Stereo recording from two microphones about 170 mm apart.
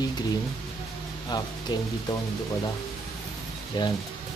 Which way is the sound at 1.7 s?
25° left (ahead or behind).